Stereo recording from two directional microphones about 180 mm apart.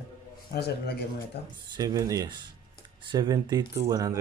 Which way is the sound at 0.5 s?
65° left (ahead or behind).